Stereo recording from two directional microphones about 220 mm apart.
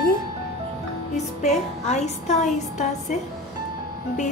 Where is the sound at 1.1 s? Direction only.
30° left (ahead or behind).